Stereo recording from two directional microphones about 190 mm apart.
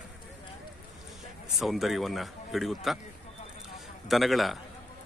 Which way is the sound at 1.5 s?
Centre (ahead or behind).